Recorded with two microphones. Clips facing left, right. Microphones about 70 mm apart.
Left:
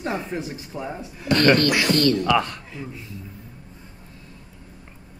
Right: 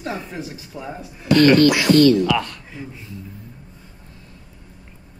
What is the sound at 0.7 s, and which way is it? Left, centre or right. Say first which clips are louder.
Speech: left 2 dB; centre.